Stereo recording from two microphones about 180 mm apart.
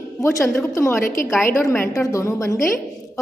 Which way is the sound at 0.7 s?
15° left (ahead or behind).